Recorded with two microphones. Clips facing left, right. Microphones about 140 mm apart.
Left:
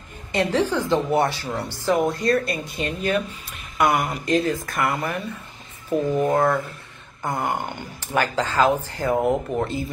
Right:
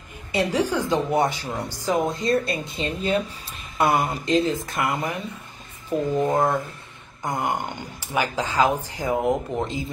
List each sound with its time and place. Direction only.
0.3 s a woman's voice: 10° right (ahead or behind)
5.9 s speech: 10° left (ahead or behind)
6.3 s speech: 15° right (ahead or behind)